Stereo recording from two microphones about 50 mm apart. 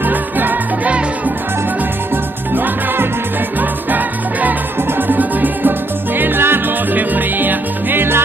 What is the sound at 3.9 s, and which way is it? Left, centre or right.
Music, right.